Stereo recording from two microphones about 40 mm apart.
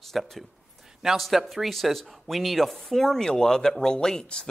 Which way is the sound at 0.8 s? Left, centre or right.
Centre.